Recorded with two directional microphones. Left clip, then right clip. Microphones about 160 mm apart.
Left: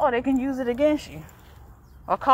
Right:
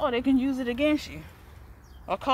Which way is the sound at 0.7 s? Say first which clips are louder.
Left 5 dB; 10° right (ahead or behind).